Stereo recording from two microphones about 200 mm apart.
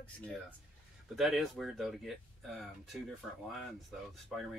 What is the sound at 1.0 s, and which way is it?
A woman's voice, centre (ahead or behind).